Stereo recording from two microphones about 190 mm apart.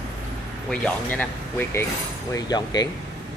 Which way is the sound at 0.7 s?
10° left (ahead or behind).